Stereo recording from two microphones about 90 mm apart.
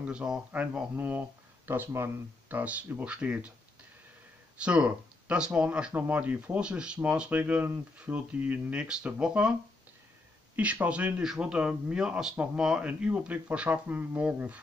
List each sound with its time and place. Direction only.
0.0 s speech: 10° right (ahead or behind)
4.6 s speech: 10° right (ahead or behind)